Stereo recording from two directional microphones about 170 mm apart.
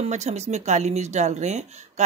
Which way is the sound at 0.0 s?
40° right (ahead or behind).